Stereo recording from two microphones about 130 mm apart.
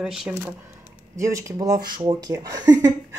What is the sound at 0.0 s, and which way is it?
Speech, 5° right (ahead or behind).